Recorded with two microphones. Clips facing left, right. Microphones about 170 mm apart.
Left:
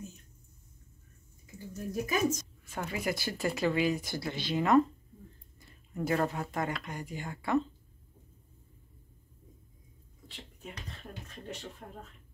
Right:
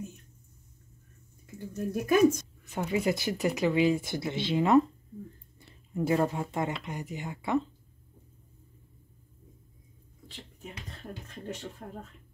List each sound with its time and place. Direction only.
1.9 s a woman's voice: 60° right (ahead or behind)
2.7 s speech: 20° right (ahead or behind)
5.9 s speech: 15° right (ahead or behind)
11.8 s speech: 30° right (ahead or behind)